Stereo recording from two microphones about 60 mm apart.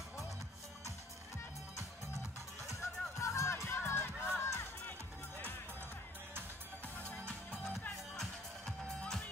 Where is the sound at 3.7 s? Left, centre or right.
Left.